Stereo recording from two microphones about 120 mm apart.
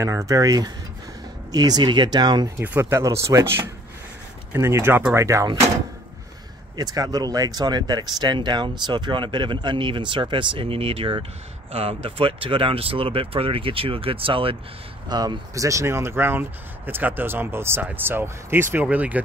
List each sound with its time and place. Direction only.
0.0 s speech: 25° right (ahead or behind)
2.6 s speech: 15° right (ahead or behind)
6.8 s speech: 30° right (ahead or behind); by 14.6 s 50° right (ahead or behind)
15.0 s speech: 35° right (ahead or behind); by 19.2 s 15° right (ahead or behind)